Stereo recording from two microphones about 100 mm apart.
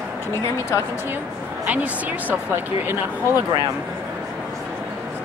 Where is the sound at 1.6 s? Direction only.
15° right (ahead or behind).